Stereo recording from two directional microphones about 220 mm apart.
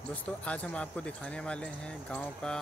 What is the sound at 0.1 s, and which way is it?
Speech, 5° left (ahead or behind).